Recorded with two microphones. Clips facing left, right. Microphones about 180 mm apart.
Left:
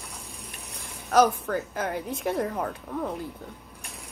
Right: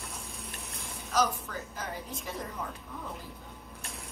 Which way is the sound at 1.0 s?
65° left (ahead or behind).